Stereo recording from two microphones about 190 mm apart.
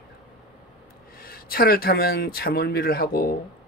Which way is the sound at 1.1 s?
50° left (ahead or behind).